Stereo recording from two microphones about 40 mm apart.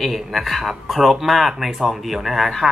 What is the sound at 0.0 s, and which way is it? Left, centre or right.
Speech, centre.